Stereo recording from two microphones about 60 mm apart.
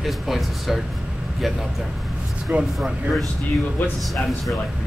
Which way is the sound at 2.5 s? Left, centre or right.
Right.